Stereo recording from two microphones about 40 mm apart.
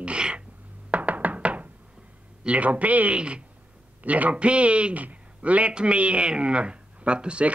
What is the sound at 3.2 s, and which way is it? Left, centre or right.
Speech, right.